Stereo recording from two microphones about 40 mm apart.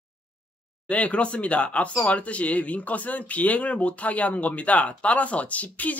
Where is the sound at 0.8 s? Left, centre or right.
Left.